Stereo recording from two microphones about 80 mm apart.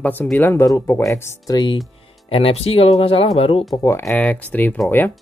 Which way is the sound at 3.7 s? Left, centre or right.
Left.